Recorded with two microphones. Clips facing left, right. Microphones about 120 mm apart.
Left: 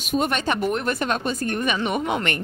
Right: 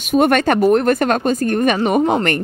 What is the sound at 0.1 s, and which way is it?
A woman's voice, 55° right (ahead or behind).